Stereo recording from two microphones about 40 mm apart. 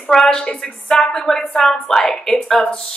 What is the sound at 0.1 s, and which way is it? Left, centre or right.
A woman's voice, centre.